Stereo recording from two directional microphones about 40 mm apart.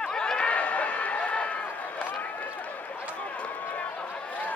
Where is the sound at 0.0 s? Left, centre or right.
Left.